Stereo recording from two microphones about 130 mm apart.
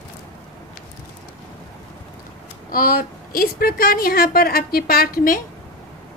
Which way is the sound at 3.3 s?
90° left.